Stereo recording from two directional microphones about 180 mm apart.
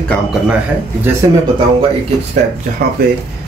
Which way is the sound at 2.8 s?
60° right (ahead or behind).